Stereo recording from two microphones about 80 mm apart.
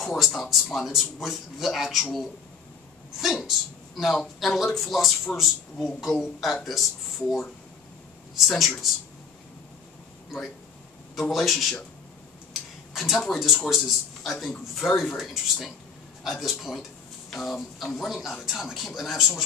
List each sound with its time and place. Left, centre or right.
0.0 s speech: centre
8.5 s speech: centre
11.1 s speech: centre
12.9 s speech: centre